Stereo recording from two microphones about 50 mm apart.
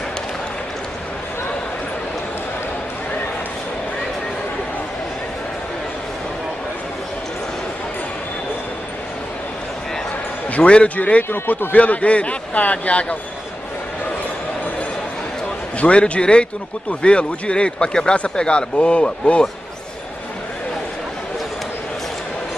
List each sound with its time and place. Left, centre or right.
10.5 s speech: left
11.2 s a man's voice: left
11.7 s speech: left
15.8 s speech: left